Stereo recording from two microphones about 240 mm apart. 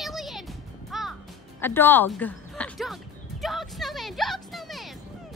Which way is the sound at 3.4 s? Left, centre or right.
Centre.